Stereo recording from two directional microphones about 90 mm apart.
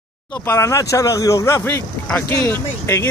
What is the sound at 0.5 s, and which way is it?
Speech, 35° left (ahead or behind).